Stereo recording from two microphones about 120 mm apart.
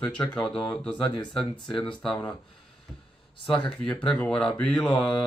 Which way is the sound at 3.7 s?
5° left (ahead or behind).